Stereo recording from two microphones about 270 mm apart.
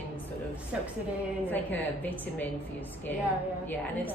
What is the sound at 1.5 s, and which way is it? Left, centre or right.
Speech, centre.